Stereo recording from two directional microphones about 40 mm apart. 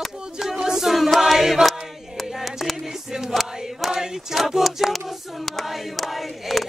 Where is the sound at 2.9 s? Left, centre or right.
Centre.